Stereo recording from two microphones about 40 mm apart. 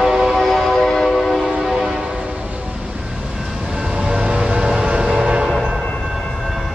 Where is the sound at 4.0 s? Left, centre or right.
Right.